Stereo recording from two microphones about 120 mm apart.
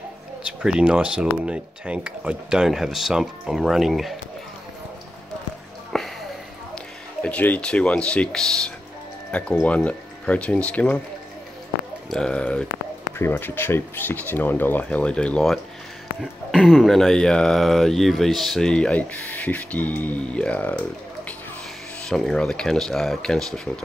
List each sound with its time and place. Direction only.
0.5 s speech: 10° right (ahead or behind)
5.9 s a sound: 5° left (ahead or behind)
7.2 s speech: 15° left (ahead or behind)
12.1 s speech: 5° left (ahead or behind)